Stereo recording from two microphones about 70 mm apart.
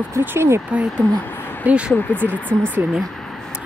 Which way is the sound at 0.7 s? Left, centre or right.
Centre.